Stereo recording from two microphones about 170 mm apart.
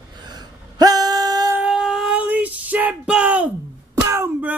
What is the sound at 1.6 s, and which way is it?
Child singing, 5° right (ahead or behind).